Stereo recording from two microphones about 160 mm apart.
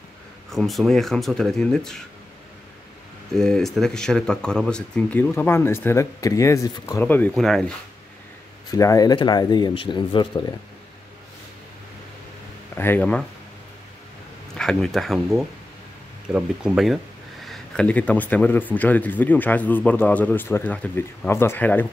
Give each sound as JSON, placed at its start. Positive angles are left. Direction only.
{"t": 0.5, "sound": "speech", "side_deg": 0}
{"t": 3.3, "sound": "speech", "side_deg": 5}
{"t": 8.6, "sound": "speech", "side_deg": 20}
{"t": 12.7, "sound": "speech", "side_deg": 15}
{"t": 14.6, "sound": "speech", "side_deg": 5}